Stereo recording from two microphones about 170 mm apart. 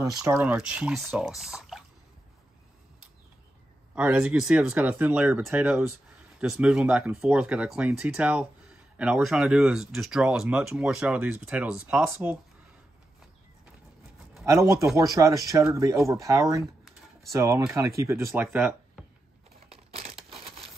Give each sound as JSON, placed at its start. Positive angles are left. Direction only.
{"t": 0.0, "sound": "speech", "side_deg": -15}
{"t": 3.9, "sound": "speech", "side_deg": -5}
{"t": 14.4, "sound": "speech", "side_deg": -15}
{"t": 19.7, "sound": "crushing", "side_deg": -35}
{"t": 20.2, "sound": "crumpling", "side_deg": -35}